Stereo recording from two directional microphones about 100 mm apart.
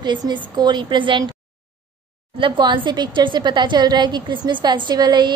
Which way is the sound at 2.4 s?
55° right (ahead or behind).